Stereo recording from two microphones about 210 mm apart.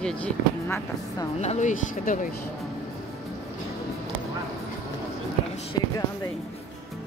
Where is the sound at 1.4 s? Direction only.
35° left (ahead or behind).